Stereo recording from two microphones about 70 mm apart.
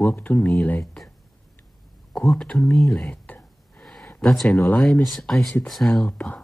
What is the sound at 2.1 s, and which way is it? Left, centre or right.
Speech, centre.